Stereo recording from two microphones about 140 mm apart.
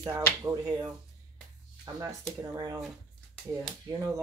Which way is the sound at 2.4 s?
25° right (ahead or behind).